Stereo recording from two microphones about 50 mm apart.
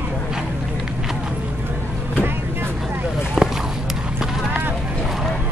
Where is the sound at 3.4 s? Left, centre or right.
Centre.